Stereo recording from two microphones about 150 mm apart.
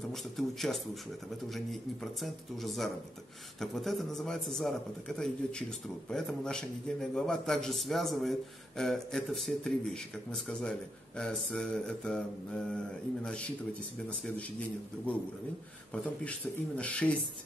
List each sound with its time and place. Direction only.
0.1 s a man's voice: centre (ahead or behind)
2.2 s a man's voice: centre (ahead or behind)
15.9 s speech: 10° left (ahead or behind)